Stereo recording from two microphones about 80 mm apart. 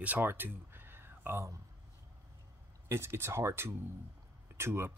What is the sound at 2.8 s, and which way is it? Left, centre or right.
Speech, right.